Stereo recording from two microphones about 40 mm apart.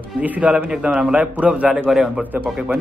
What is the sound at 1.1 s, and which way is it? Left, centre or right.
Speech, right.